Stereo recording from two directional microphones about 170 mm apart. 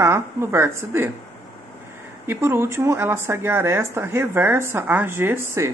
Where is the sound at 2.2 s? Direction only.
15° right (ahead or behind).